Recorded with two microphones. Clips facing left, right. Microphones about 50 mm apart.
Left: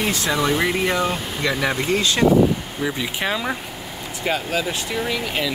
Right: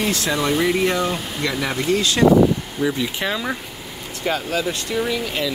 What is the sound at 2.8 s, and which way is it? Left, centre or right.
Speech, centre.